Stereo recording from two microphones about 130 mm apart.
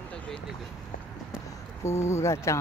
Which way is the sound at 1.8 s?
20° left (ahead or behind).